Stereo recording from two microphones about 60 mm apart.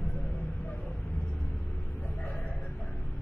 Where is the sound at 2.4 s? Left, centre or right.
Left.